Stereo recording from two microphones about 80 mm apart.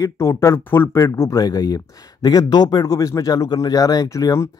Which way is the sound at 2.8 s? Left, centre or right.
Left.